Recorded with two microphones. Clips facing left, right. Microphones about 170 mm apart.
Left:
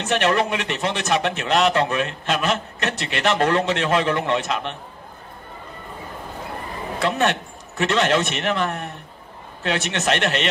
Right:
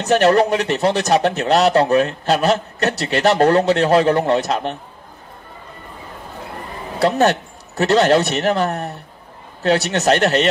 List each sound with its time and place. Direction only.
0.0 s speech: 40° right (ahead or behind)
7.0 s speech: 40° right (ahead or behind)